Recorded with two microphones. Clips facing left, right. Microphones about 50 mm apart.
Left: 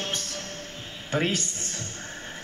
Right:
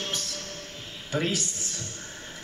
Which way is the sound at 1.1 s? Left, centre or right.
Left.